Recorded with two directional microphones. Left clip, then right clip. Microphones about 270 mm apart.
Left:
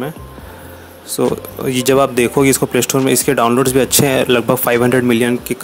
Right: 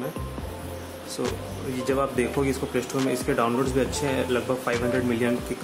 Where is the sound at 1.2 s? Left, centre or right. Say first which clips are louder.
Left 14 dB; left.